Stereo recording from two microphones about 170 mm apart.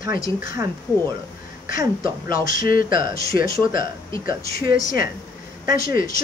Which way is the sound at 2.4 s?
55° left (ahead or behind).